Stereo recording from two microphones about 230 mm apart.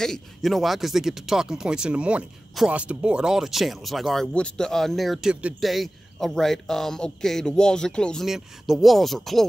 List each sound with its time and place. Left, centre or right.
0.0 s speech: centre